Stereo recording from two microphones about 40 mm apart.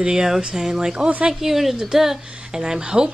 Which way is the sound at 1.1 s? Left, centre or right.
Right.